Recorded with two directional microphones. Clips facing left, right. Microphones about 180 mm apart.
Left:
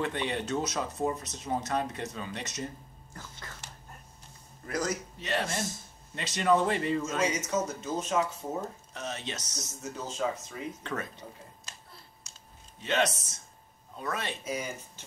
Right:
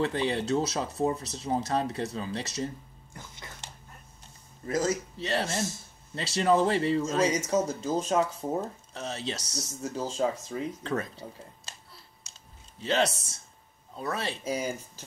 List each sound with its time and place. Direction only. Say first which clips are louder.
0.0 s speech: right 4 dB; 35° right (ahead or behind)
3.1 s dog: even; 15° right (ahead or behind)
4.6 s speech: right 4 dB; 25° right (ahead or behind)
12.8 s speech: right 2 dB; 35° right (ahead or behind)